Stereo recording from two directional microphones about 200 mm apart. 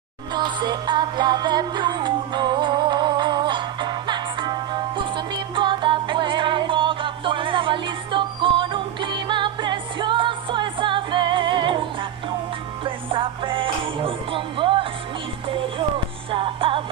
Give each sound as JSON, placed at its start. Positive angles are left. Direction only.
{"t": 0.3, "sound": "music", "side_deg": -20}
{"t": 16.3, "sound": "music", "side_deg": -25}